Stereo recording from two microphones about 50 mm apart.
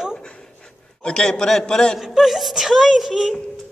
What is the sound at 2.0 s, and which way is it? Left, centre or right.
Speech, centre.